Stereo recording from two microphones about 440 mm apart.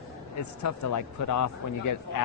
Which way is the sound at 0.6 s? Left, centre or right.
Left.